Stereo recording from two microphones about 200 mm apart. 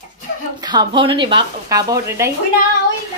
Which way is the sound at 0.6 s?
20° right (ahead or behind).